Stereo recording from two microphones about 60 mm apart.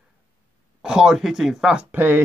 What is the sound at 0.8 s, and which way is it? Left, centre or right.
A man's voice, centre.